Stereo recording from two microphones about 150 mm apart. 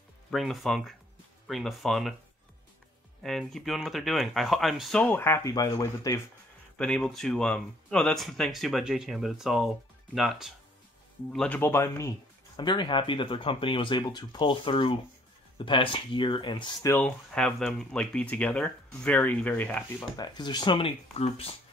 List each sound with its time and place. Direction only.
0.3 s speech: centre (ahead or behind)
3.2 s speech: centre (ahead or behind); by 6.2 s 20° left (ahead or behind)
6.8 s speech: 5° left (ahead or behind)
11.3 s speech: 10° left (ahead or behind)
12.5 s speech: 30° left (ahead or behind)
16.9 s speech: 5° left (ahead or behind)
20.0 s speech: 30° left (ahead or behind)